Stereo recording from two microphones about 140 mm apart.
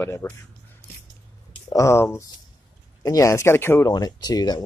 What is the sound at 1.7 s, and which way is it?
Speech, 20° left (ahead or behind).